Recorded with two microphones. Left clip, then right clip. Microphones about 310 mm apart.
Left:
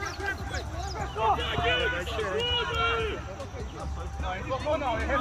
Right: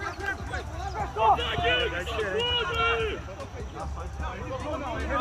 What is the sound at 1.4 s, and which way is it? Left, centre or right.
Run, centre.